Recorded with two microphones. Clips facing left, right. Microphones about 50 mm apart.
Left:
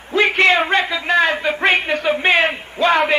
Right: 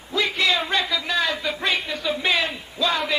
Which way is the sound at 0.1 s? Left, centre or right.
Left.